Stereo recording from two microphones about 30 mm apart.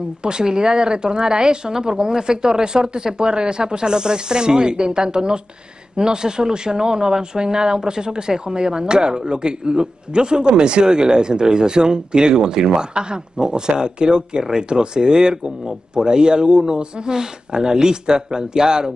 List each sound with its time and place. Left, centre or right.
0.2 s speech: right